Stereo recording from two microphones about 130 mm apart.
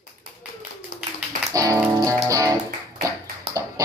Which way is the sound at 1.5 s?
25° right (ahead or behind).